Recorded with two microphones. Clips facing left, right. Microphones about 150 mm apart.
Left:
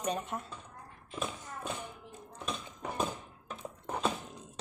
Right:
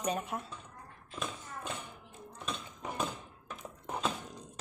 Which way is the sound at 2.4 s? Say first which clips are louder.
Left 1 dB; 10° left (ahead or behind).